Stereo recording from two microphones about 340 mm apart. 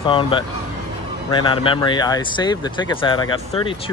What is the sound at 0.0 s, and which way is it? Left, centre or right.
Speech, centre.